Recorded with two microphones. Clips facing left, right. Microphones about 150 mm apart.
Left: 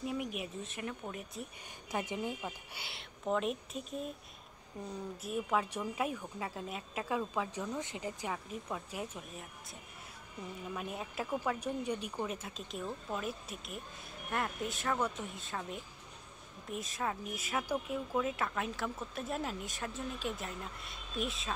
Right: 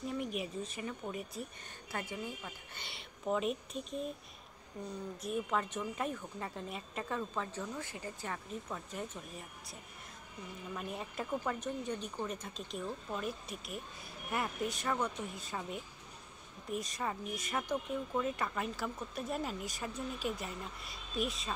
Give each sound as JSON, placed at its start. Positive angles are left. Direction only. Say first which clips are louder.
{"t": 0.0, "sound": "speech", "louder": "even", "side_deg": 5}
{"t": 1.9, "sound": "speech", "louder": "left 4 dB", "side_deg": 15}
{"t": 2.8, "sound": "speech", "louder": "even", "side_deg": 0}
{"t": 5.2, "sound": "speech", "louder": "left 1 dB", "side_deg": 5}
{"t": 10.7, "sound": "speech", "louder": "right 1 dB", "side_deg": 5}